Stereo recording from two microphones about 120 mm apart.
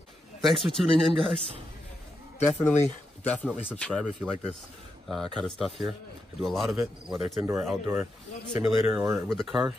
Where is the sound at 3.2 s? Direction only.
15° left (ahead or behind); by 7.5 s centre (ahead or behind).